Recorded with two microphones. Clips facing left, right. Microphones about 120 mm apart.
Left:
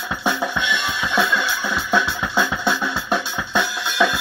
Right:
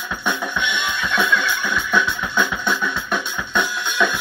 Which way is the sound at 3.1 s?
35° left (ahead or behind).